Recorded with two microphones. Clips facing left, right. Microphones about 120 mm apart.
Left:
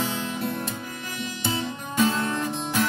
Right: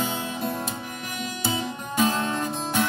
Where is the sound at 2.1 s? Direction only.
20° right (ahead or behind).